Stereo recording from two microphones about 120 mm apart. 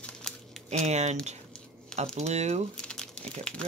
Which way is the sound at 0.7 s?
70° right (ahead or behind).